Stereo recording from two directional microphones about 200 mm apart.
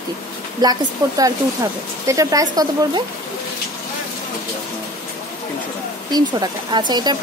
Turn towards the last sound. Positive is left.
turn(degrees=-20)  # may be behind; listen again after turning